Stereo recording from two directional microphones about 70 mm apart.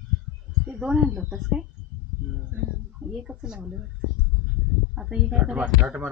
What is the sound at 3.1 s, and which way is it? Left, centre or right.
Speech, centre.